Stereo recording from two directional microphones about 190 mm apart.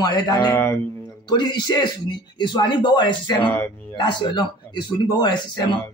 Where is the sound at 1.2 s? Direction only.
25° left (ahead or behind).